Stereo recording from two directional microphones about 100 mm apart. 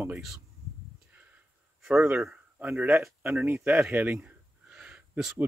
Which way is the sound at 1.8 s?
10° right (ahead or behind).